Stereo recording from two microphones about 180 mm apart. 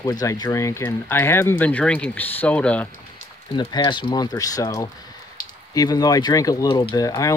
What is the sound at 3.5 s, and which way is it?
Speech, 25° left (ahead or behind).